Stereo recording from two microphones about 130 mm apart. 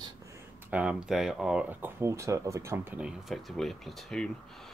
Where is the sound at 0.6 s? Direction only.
10° right (ahead or behind).